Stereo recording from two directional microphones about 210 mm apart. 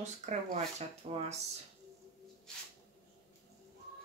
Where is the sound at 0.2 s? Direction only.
35° right (ahead or behind).